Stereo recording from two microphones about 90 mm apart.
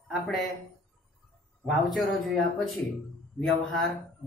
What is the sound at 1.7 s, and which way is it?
Speech, centre (ahead or behind).